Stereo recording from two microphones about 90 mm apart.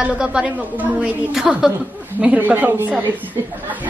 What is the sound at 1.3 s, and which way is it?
Speech, 5° right (ahead or behind).